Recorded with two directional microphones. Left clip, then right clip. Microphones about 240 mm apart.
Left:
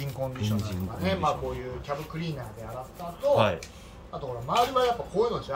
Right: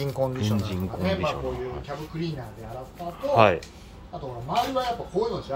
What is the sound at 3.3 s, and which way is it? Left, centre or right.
Speech, centre.